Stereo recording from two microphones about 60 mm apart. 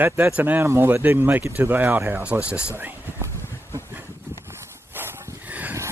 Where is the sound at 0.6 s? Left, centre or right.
Right.